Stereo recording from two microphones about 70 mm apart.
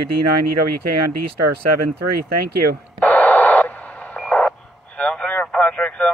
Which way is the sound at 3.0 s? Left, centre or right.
Left.